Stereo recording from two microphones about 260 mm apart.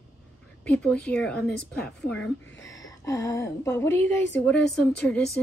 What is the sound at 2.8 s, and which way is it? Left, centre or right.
A woman's voice, centre.